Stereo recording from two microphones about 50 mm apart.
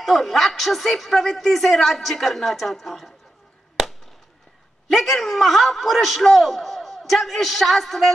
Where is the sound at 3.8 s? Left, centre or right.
Centre.